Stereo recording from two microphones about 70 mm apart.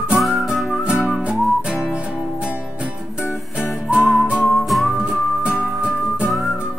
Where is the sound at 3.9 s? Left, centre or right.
Centre.